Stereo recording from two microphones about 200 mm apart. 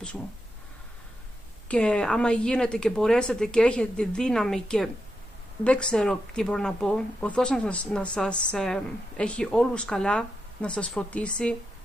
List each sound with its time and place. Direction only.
1.7 s speech: 5° left (ahead or behind)